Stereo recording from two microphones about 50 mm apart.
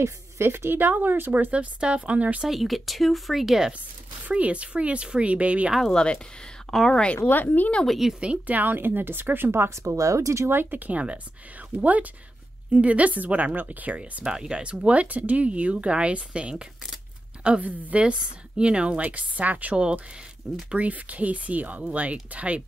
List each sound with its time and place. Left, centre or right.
0.0 s speech: right
1.3 s speech: right
2.4 s speech: centre
4.3 s speech: right
5.9 s speech: centre
6.7 s speech: centre
7.2 s speech: left
8.2 s speech: right
8.5 s speech: right
9.8 s speech: right
10.5 s speech: right
14.2 s a woman's voice: centre